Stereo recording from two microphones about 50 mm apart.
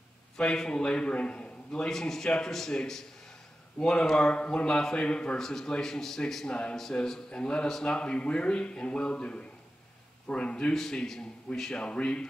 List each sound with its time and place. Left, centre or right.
0.4 s a man's voice: centre
1.7 s a man's voice: centre
5.4 s a man's voice: centre